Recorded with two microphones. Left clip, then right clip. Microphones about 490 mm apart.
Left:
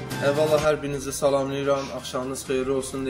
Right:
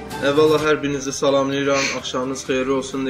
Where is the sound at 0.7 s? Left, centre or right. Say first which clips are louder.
Right 4 dB; left.